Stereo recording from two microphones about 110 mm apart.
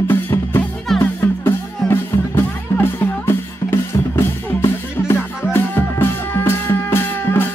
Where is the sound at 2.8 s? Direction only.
20° left (ahead or behind).